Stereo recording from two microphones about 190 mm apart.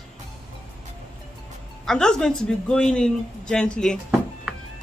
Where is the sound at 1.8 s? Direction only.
5° left (ahead or behind).